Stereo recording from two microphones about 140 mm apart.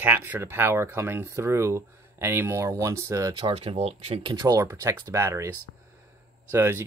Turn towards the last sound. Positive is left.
turn(degrees=-15)  # may be behind; listen again after turning